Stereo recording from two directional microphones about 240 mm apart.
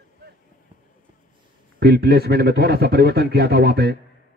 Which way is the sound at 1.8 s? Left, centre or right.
Right.